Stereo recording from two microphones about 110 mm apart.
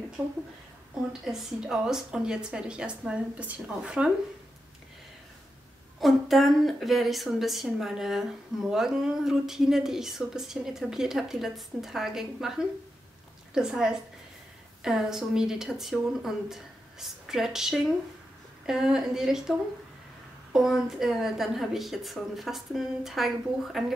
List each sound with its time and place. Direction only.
1.2 s a woman's voice: 5° right (ahead or behind)
5.9 s a woman's voice: centre (ahead or behind)
20.5 s a woman's voice: 5° right (ahead or behind)